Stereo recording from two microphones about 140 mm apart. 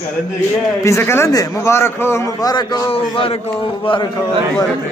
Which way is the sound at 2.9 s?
45° left (ahead or behind).